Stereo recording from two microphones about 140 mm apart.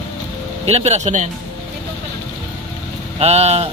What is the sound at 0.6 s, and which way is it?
Speech, 50° right (ahead or behind).